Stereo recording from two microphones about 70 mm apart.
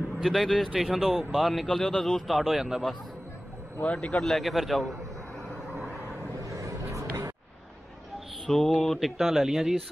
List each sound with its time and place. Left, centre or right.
0.2 s speech: centre
3.8 s speech: centre
4.2 s speech: centre
6.4 s vehicle: right
8.5 s speech: centre